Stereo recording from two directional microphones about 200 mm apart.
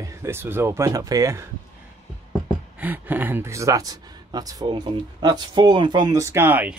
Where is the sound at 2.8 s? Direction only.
10° right (ahead or behind).